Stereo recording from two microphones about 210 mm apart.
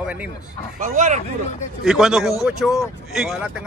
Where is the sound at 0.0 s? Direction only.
5° right (ahead or behind).